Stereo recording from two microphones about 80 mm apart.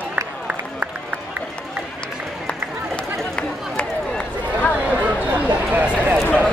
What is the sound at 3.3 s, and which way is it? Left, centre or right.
Run, centre.